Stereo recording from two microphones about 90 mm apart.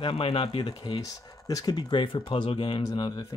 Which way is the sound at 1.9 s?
60° left (ahead or behind).